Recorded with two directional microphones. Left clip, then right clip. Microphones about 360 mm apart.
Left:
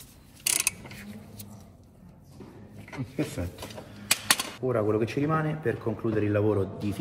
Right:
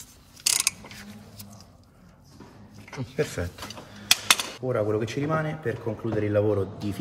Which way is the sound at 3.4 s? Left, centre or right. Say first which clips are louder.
Right 4 dB; right.